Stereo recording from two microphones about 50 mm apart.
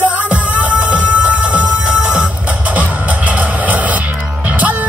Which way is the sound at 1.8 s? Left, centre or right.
Right.